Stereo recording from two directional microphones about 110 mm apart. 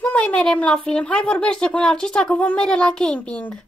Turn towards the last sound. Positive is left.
turn(degrees=10)  # may be behind; listen again after turning